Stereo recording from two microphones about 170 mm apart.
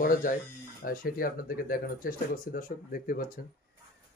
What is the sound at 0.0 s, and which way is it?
Speech, 55° left (ahead or behind).